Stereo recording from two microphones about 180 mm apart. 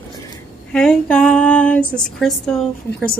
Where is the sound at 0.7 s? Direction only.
5° left (ahead or behind).